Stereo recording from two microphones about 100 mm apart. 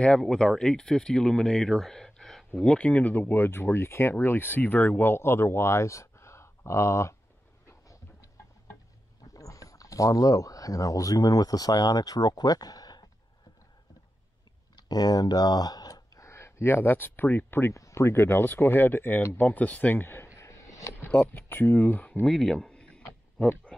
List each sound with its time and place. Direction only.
0.0 s speech: 10° left (ahead or behind); by 7.2 s 30° left (ahead or behind)
7.6 s vehicle: 30° left (ahead or behind)
9.2 s speech: 35° left (ahead or behind)
14.8 s speech: 40° left (ahead or behind); by 20.2 s 20° left (ahead or behind)
20.3 s a sound: 30° left (ahead or behind)
20.9 s speech: 15° left (ahead or behind)
23.7 s a sound: 5° left (ahead or behind)